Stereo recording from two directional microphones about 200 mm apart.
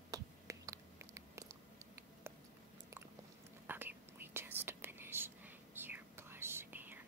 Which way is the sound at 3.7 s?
10° right (ahead or behind).